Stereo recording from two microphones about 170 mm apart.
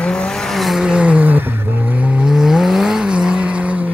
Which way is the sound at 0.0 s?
5° left (ahead or behind).